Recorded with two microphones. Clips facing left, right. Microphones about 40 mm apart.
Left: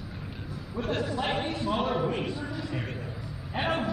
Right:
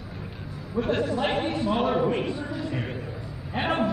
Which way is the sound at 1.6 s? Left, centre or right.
Centre.